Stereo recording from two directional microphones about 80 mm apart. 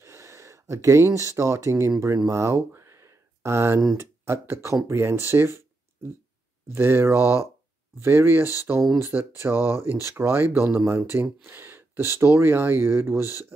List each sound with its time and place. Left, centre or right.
0.0 s speech: right
2.2 s a sound: right
3.9 s speech: right
6.7 s speech: right